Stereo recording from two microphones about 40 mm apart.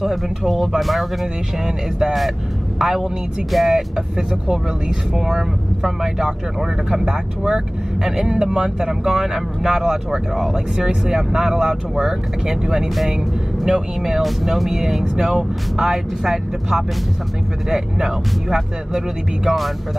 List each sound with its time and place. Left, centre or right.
0.0 s speech: centre
3.5 s speech: centre
4.3 s speech: centre